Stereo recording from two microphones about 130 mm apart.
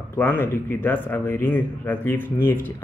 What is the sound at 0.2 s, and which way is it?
Speech, 20° left (ahead or behind).